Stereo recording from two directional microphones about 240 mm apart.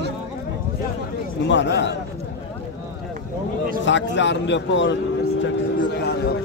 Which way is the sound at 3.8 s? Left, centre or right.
Left.